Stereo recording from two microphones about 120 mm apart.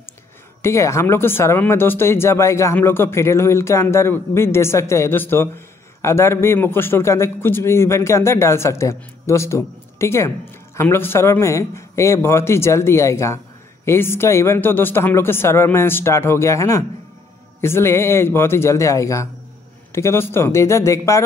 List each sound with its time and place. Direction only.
0.6 s speech: 25° left (ahead or behind)